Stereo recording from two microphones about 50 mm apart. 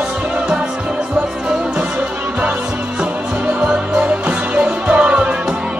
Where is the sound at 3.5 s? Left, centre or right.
Right.